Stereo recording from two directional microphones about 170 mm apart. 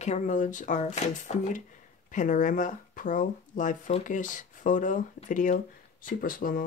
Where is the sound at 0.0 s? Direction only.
45° left (ahead or behind).